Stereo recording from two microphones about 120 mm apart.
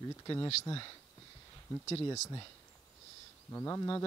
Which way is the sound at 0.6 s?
40° left (ahead or behind).